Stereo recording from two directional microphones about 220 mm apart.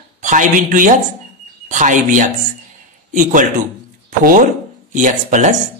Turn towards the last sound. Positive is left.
turn(degrees=-35)  # may be behind; listen again after turning